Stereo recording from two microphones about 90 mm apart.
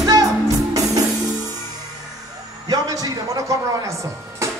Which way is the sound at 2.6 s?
45° right (ahead or behind).